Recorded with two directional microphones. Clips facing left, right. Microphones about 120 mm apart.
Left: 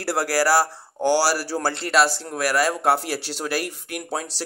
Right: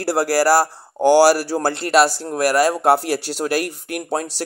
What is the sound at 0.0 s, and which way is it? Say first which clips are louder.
Speech: right 4 dB; 40° right (ahead or behind).